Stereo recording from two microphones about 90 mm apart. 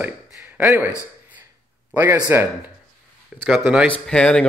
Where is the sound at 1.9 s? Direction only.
20° right (ahead or behind).